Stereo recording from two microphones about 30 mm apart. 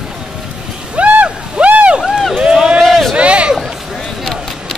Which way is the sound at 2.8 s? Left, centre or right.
Centre.